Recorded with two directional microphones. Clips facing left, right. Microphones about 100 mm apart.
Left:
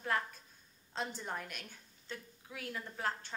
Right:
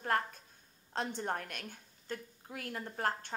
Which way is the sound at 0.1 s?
55° right (ahead or behind).